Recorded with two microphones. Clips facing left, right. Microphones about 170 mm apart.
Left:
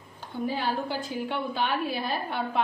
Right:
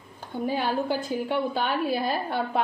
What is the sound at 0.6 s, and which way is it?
A woman's voice, 50° right (ahead or behind).